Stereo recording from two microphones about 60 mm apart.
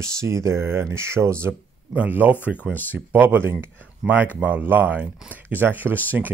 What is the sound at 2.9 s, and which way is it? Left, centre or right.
Speech, right.